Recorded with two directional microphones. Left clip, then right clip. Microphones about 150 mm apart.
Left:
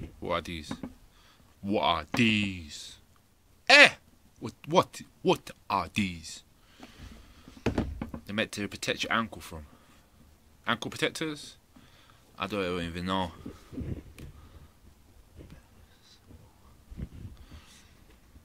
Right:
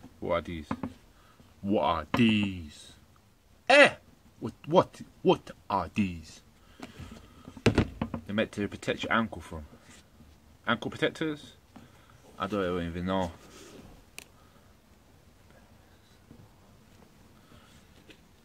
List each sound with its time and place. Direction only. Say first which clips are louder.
0.2 s speech: right 2 dB; 20° left (ahead or behind)
1.7 s speech: even; 20° left (ahead or behind)
7.6 s a sound: right 5 dB; 30° right (ahead or behind)
8.3 s speech: right 1 dB; 15° left (ahead or behind)
10.6 s speech: right 1 dB; 15° left (ahead or behind)